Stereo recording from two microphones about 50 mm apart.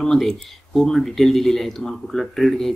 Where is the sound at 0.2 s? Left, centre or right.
Centre.